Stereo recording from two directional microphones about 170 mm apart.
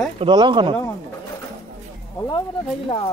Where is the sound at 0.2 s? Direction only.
30° right (ahead or behind).